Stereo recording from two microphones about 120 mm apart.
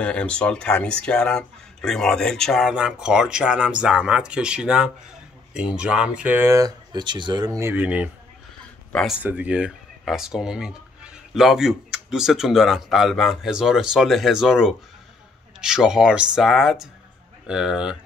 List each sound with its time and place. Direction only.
0.0 s speech: 10° left (ahead or behind); by 6.5 s 15° right (ahead or behind)
6.5 s speech: 35° right (ahead or behind)
7.6 s speech: 15° right (ahead or behind)
9.2 s speech: 10° right (ahead or behind)